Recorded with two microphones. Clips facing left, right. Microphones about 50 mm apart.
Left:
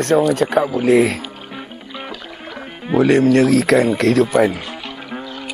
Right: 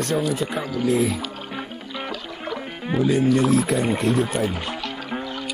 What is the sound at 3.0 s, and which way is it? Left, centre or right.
Speech, left.